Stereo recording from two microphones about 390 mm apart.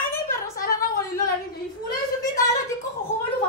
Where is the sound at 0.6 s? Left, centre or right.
Left.